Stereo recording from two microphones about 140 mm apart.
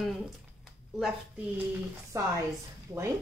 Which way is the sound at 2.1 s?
20° right (ahead or behind).